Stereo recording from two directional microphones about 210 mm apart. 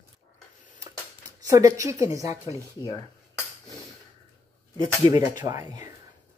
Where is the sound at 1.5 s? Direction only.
15° right (ahead or behind).